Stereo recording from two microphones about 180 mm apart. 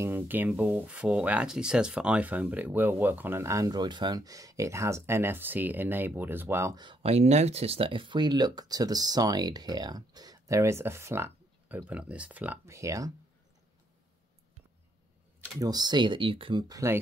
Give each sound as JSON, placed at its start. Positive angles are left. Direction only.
{"t": 0.0, "sound": "speech", "side_deg": -10}
{"t": 15.6, "sound": "speech", "side_deg": -20}